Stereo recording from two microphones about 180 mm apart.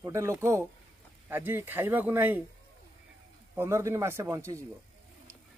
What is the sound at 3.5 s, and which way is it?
Speech, 15° right (ahead or behind).